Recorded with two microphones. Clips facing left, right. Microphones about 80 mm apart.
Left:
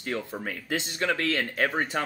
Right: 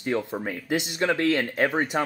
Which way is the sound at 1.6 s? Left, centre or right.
Centre.